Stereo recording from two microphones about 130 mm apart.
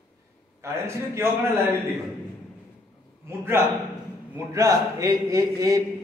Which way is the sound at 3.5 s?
20° right (ahead or behind).